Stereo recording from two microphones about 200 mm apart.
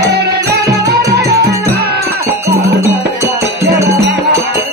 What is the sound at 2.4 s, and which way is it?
Music, 15° right (ahead or behind).